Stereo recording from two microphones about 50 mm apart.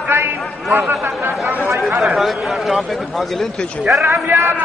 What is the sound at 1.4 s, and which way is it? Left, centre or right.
Speech, right.